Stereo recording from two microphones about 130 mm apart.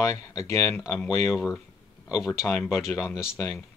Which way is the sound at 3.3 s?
25° left (ahead or behind).